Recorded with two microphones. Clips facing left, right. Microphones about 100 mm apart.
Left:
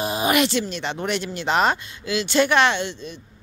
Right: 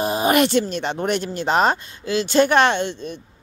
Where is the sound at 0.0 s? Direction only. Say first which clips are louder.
Right 3 dB; 40° right (ahead or behind).